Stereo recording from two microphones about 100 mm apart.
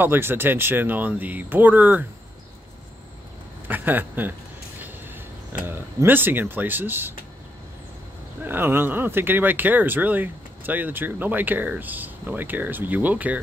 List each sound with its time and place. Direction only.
0.0 s speech: 20° right (ahead or behind)
3.6 s speech: 20° right (ahead or behind)
4.8 s a sound: 20° right (ahead or behind)
6.0 s speech: 20° right (ahead or behind)
8.5 s speech: 20° right (ahead or behind)